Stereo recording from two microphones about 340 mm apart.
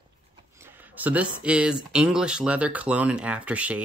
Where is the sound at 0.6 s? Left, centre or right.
Centre.